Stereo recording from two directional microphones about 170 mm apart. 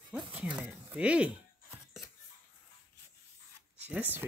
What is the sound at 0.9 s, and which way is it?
Speech, 5° right (ahead or behind).